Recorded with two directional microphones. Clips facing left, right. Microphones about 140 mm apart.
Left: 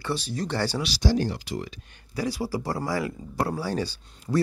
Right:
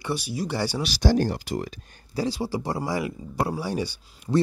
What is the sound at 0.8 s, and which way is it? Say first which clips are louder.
Speech: right 2 dB; 55° right (ahead or behind).